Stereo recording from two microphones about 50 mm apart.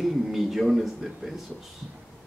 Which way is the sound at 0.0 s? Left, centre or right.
Centre.